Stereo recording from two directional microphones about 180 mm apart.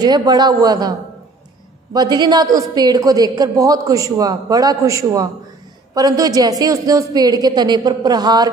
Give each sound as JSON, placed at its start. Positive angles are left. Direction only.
{"t": 0.0, "sound": "a woman's voice", "side_deg": -20}
{"t": 2.0, "sound": "a woman's voice", "side_deg": -25}